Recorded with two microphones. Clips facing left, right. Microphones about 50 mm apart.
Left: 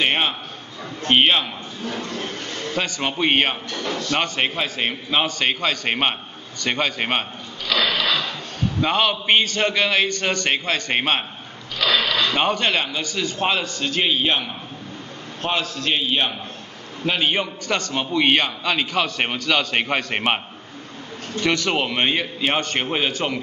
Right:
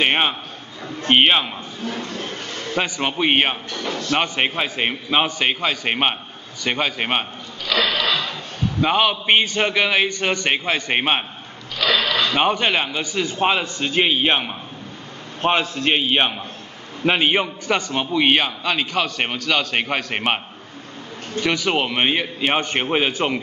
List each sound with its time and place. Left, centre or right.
0.0 s a sound: centre
1.0 s a man's voice: centre
6.6 s a sound: centre
8.8 s a man's voice: centre
11.8 s mechanisms: centre
12.4 s a man's voice: centre
21.4 s a man's voice: centre